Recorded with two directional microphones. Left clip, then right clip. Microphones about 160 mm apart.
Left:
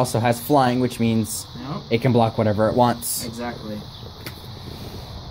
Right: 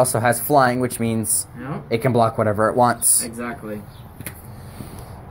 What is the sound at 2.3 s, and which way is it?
Speech, 35° left (ahead or behind).